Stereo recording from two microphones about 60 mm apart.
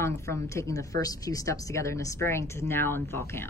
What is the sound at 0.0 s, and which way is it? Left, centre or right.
Speech, left.